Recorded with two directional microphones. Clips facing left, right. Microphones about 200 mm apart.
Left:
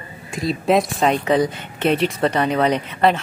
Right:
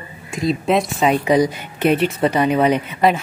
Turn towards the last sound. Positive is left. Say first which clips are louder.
# right 1 dB
turn(degrees=-10)  # may be behind; listen again after turning